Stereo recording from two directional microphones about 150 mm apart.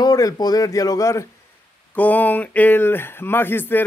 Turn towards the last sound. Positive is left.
turn(degrees=15)  # may be behind; listen again after turning